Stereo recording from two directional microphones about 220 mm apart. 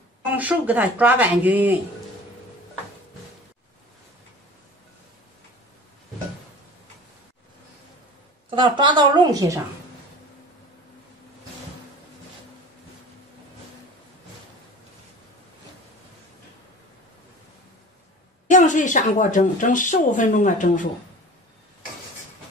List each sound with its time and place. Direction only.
0.4 s speech: 5° right (ahead or behind)
8.5 s a woman's voice: 20° right (ahead or behind)
18.5 s speech: 35° left (ahead or behind)